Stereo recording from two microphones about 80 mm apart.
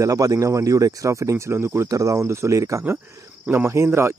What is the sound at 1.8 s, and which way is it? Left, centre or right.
Speech, right.